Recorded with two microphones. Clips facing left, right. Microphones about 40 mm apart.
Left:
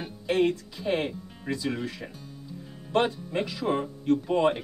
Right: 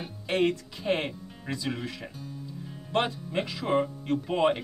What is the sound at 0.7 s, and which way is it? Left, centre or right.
Speech, centre.